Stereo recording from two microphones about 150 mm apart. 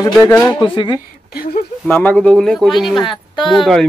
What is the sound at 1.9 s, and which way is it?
Speech, 10° left (ahead or behind).